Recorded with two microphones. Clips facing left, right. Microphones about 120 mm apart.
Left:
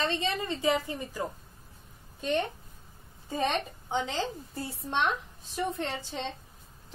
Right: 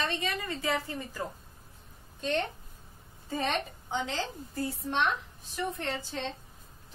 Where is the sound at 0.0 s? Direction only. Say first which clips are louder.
Left 3 dB; 25° left (ahead or behind).